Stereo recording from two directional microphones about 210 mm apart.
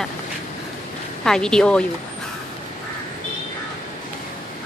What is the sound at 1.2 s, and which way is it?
Speech, 5° left (ahead or behind).